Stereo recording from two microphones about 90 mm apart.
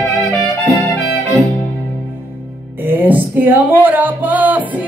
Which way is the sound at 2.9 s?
20° right (ahead or behind).